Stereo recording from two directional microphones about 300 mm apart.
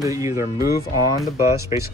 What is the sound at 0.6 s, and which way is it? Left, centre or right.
Speech, left.